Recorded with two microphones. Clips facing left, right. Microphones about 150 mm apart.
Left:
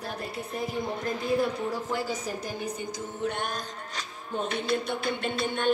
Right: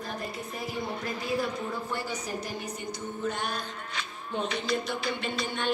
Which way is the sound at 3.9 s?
50° left (ahead or behind).